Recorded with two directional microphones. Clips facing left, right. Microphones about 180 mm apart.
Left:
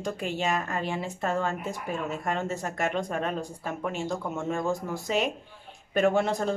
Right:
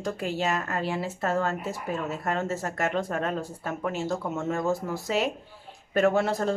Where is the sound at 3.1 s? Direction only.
10° left (ahead or behind).